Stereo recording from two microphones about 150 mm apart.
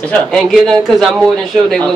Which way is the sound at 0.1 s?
5° left (ahead or behind).